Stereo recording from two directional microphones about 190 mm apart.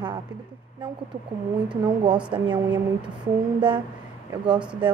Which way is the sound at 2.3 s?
25° right (ahead or behind).